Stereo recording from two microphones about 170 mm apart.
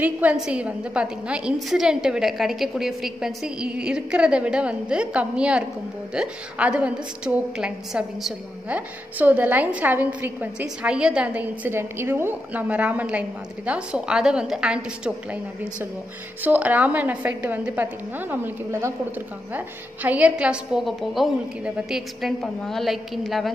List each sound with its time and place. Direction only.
0.0 s a woman's voice: 10° right (ahead or behind)